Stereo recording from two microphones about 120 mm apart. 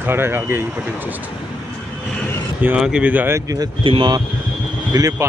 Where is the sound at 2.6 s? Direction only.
10° right (ahead or behind).